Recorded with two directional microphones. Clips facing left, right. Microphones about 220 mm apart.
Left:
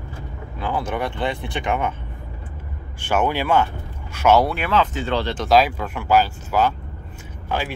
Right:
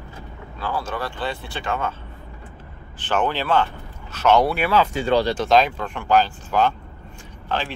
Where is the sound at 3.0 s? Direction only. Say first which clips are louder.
Left 2 dB; 10° left (ahead or behind).